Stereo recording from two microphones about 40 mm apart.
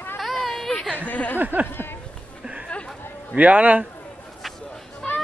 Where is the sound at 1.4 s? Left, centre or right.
Right.